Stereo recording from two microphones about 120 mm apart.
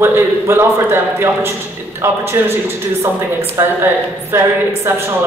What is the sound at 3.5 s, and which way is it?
A woman's voice, 20° right (ahead or behind).